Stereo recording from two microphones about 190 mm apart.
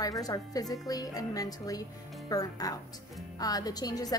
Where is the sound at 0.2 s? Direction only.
20° left (ahead or behind).